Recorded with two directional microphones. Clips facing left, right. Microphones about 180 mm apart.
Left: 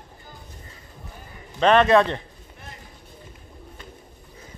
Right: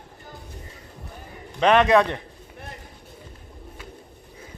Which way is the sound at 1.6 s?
15° right (ahead or behind).